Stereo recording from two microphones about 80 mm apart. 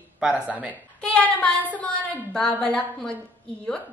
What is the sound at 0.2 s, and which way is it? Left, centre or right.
Speech, centre.